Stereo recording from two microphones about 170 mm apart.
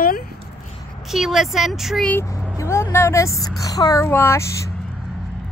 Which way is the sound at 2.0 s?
15° left (ahead or behind).